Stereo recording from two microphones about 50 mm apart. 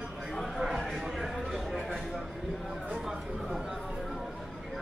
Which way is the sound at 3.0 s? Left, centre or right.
Centre.